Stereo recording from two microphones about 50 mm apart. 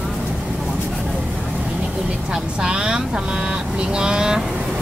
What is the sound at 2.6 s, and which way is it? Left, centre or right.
Speech, centre.